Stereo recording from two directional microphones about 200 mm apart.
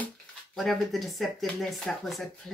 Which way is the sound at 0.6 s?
Centre (ahead or behind).